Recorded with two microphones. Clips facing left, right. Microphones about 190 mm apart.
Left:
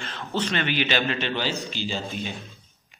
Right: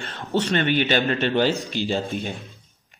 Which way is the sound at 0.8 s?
50° right (ahead or behind).